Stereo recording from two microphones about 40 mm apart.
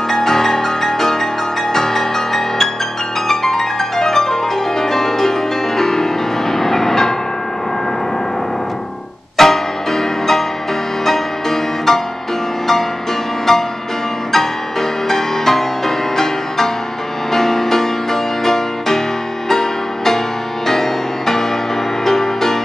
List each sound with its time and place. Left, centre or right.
0.1 s music: centre
9.4 s music: centre
13.5 s music: centre